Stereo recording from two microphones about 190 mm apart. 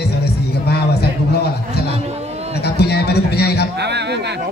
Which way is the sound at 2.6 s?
60° left (ahead or behind).